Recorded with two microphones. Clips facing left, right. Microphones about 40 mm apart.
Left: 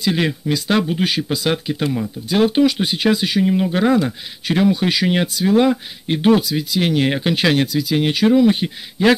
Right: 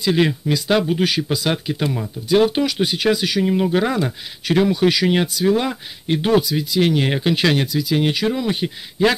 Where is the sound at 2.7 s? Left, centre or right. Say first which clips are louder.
Left 1 dB; left.